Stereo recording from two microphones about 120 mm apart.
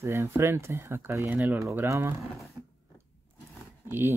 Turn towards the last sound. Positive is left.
turn(degrees=-20)  # may be behind; listen again after turning